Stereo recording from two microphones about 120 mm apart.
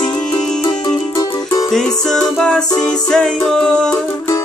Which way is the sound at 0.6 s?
35° left (ahead or behind).